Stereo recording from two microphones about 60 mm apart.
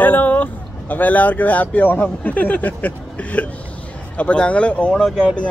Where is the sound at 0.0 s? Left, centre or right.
Left.